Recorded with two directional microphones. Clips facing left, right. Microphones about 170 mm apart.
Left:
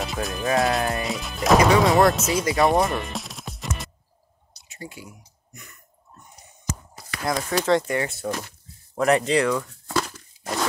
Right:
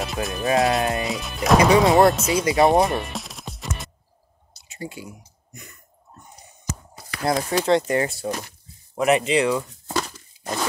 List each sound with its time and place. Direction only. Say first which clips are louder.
0.0 s speech: right 1 dB; centre (ahead or behind)
0.7 s speech: right 2 dB; 20° right (ahead or behind)
1.0 s speech: even; centre (ahead or behind)
2.4 s speech: right 3 dB; 20° right (ahead or behind)
2.9 s music: right 1 dB; centre (ahead or behind)
4.7 s speech: right 4 dB; 25° right (ahead or behind)
7.2 s speech: right 2 dB; 25° right (ahead or behind)
7.9 s speech: right 3 dB; 35° right (ahead or behind)
8.9 s speech: right 1 dB; 15° right (ahead or behind)
10.1 s a sound: even; centre (ahead or behind)